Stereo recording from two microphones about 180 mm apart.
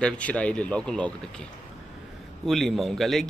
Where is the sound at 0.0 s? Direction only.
5° left (ahead or behind).